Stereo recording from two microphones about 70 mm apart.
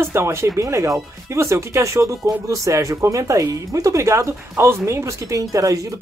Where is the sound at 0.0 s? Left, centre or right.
Right.